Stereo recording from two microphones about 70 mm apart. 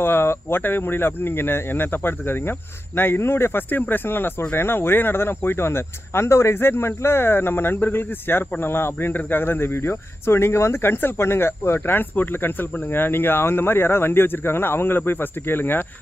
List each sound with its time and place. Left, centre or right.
0.0 s speech: left